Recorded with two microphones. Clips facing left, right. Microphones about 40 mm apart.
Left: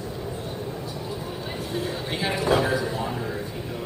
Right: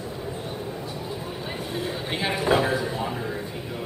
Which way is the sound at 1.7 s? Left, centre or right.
Centre.